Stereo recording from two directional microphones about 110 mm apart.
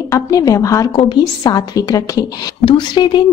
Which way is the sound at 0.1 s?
35° left (ahead or behind).